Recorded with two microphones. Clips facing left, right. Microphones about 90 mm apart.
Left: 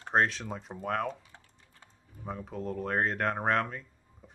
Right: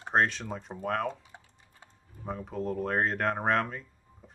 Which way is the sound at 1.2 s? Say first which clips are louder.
Right 3 dB; 15° right (ahead or behind).